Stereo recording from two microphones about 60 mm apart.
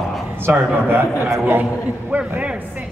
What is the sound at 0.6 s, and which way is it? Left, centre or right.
A man's voice, right.